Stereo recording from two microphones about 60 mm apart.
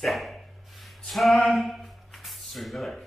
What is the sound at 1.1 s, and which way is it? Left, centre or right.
Speech, centre.